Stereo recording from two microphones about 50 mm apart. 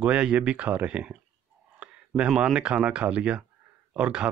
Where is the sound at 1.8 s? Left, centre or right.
Centre.